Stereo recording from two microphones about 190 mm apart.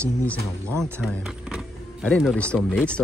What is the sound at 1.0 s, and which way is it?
Speech, centre (ahead or behind).